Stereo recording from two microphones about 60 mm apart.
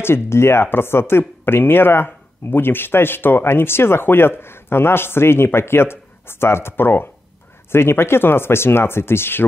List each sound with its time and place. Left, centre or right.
0.0 s speech: left